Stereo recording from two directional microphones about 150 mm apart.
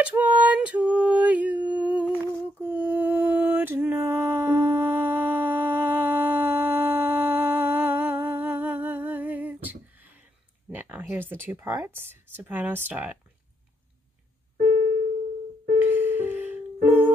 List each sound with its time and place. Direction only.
0.0 s a sound: 10° right (ahead or behind)
2.6 s mantra: 10° right (ahead or behind)
10.7 s speech: 10° right (ahead or behind)
14.6 s music: 55° right (ahead or behind)
15.8 s music: 15° right (ahead or behind)